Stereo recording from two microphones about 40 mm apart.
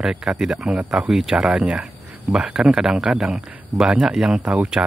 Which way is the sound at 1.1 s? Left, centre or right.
Centre.